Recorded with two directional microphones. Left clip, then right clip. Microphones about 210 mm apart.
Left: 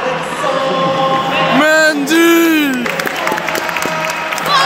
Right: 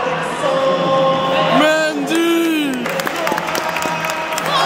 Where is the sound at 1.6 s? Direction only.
15° left (ahead or behind).